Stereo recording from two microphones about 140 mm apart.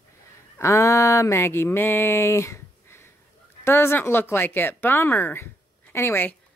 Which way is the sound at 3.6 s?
15° left (ahead or behind).